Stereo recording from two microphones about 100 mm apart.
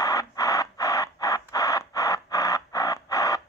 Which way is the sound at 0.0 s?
35° left (ahead or behind).